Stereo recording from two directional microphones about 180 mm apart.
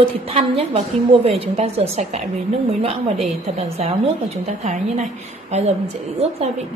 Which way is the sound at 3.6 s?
35° right (ahead or behind).